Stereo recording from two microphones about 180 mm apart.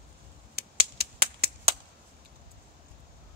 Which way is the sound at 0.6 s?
60° right (ahead or behind).